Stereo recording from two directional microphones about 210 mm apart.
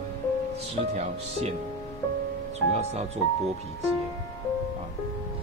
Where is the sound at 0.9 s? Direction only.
30° right (ahead or behind).